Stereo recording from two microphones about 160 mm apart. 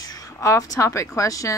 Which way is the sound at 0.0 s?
20° left (ahead or behind).